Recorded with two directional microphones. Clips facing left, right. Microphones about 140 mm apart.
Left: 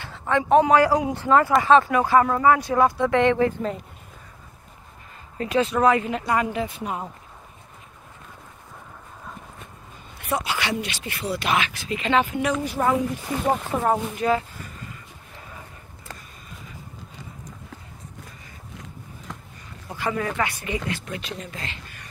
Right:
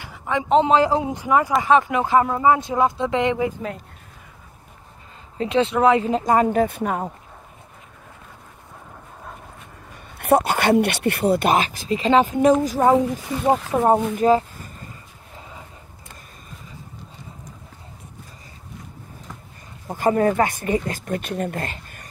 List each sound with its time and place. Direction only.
0.0 s a man's voice: 15° right (ahead or behind)
5.4 s speech: 25° right (ahead or behind)
6.2 s speech: 45° right (ahead or behind)
9.9 s speech: 60° right (ahead or behind); by 14.4 s 40° right (ahead or behind)
19.9 s speech: 45° right (ahead or behind)